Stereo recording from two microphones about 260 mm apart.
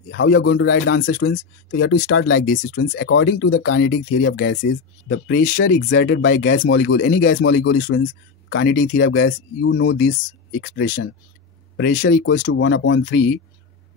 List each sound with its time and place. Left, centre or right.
0.1 s speech: left
1.1 s speech: left
2.4 s speech: left
5.7 s speech: left
10.6 s speech: left
12.5 s speech: left